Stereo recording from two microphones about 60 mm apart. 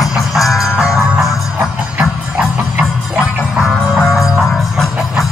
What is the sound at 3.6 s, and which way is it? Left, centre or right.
Music, centre.